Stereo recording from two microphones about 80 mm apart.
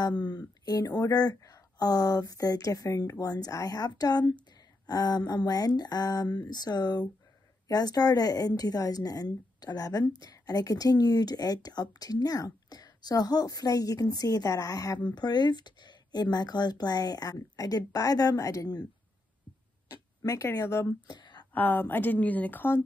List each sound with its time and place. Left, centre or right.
0.0 s a woman's voice: left
15.1 s speech: left
20.2 s speech: left
21.1 s a sound: left
21.5 s speech: left